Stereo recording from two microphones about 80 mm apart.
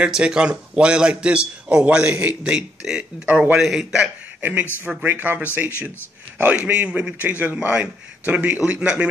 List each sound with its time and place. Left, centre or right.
0.0 s a man's voice: centre
4.4 s a man's voice: right